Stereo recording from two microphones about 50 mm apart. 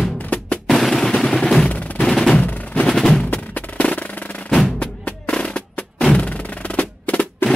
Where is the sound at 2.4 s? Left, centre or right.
Left.